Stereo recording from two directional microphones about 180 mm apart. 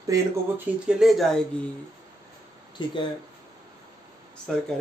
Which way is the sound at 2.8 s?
25° left (ahead or behind).